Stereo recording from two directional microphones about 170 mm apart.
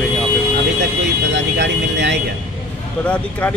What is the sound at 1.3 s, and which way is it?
Speech, 90° right.